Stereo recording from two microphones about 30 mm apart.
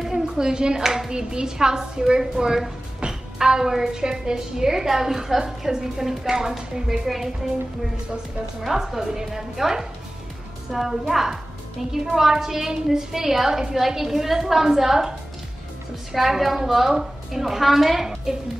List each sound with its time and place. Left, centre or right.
0.1 s clapping: right
0.8 s a woman's voice: centre
1.1 s a woman's voice: right
8.9 s a woman's voice: centre
16.1 s a woman's voice: centre